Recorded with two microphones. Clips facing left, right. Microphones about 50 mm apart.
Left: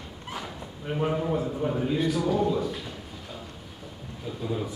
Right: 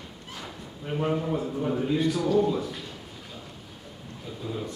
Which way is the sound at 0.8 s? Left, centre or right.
Centre.